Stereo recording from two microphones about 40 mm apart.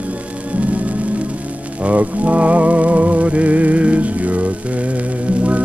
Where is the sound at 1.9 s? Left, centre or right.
Right.